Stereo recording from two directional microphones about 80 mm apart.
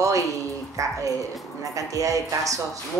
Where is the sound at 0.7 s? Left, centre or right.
Right.